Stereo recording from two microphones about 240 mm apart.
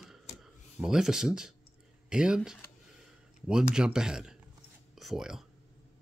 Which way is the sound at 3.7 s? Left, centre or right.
Centre.